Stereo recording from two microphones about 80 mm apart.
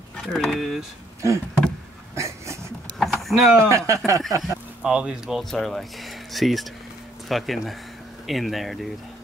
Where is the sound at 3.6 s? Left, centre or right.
Right.